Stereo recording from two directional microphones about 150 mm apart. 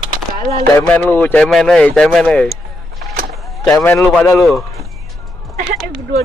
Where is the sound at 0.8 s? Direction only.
10° left (ahead or behind).